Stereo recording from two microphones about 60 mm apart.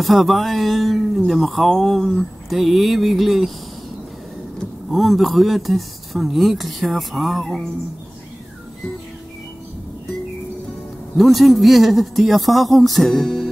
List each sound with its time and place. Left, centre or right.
0.0 s speech: centre
4.9 s speech: centre
11.1 s speech: centre